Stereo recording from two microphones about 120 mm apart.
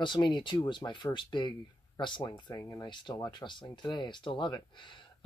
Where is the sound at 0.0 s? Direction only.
40° left (ahead or behind).